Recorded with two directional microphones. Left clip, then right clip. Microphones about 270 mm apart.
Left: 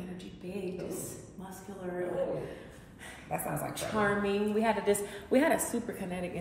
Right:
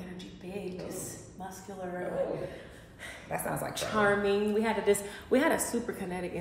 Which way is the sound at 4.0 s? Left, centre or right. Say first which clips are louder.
Right 3 dB; centre.